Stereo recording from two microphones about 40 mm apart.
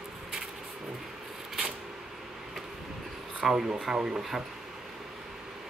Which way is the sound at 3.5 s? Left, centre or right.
Right.